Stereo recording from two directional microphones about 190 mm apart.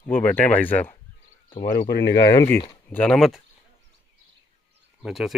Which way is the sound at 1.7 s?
55° left (ahead or behind).